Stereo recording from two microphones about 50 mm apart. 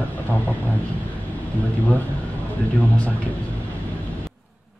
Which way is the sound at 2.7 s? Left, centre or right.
Left.